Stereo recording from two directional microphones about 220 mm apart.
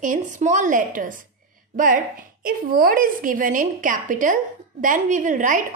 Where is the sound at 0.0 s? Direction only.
35° right (ahead or behind).